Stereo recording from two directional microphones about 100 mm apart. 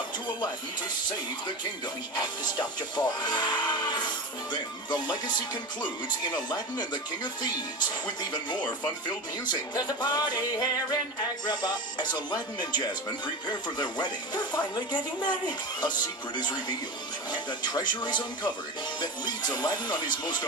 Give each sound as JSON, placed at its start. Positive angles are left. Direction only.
{"t": 2.1, "sound": "music", "side_deg": 45}